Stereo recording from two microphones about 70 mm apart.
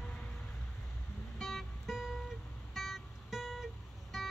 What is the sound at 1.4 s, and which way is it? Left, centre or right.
Music, centre.